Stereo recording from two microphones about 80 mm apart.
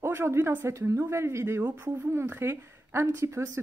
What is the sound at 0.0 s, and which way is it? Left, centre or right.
A woman's voice, right.